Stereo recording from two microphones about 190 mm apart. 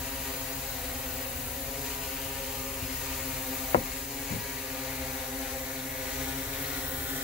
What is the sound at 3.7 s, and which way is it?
Sizzle, 30° left (ahead or behind).